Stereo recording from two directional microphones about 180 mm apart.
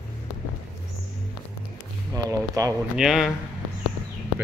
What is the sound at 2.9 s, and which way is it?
Speech, centre (ahead or behind).